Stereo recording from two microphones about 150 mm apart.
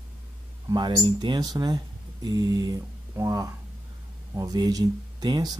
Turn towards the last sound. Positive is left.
turn(degrees=-25)  # may be behind; listen again after turning